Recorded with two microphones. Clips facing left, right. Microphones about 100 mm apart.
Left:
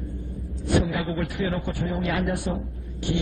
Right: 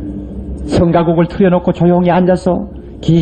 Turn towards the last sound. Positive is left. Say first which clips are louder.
# right 15 dB
turn(degrees=-70)  # may be behind; listen again after turning